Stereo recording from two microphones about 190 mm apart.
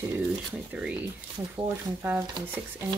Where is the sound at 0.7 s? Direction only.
5° right (ahead or behind).